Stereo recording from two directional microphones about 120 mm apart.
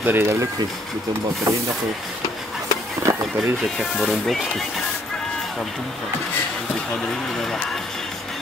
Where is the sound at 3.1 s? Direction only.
20° right (ahead or behind).